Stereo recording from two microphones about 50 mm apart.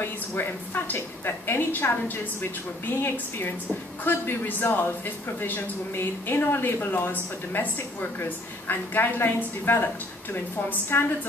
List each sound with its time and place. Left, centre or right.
0.0 s a woman's voice: left
1.7 s speech: left